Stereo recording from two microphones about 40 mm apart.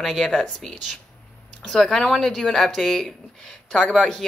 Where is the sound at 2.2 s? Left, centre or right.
Centre.